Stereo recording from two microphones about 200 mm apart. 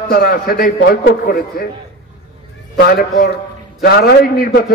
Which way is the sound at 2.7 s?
55° left (ahead or behind).